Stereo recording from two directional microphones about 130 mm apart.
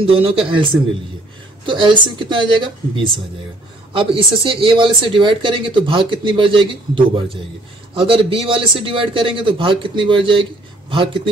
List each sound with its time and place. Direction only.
0.0 s speech: 45° right (ahead or behind)
1.7 s speech: 40° right (ahead or behind)